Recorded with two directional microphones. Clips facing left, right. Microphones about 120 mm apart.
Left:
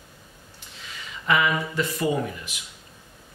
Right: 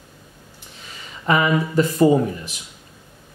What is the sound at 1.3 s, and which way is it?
Speech, 35° right (ahead or behind).